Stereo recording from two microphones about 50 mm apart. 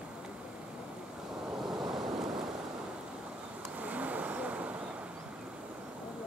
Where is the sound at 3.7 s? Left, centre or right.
Right.